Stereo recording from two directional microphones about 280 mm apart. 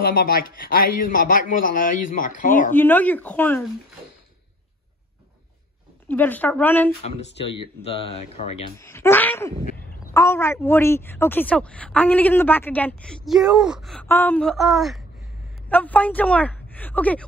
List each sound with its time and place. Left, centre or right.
0.0 s a man's voice: left
2.7 s speech: centre
6.0 s speech: centre
7.1 s a man's voice: left
8.7 s speech: centre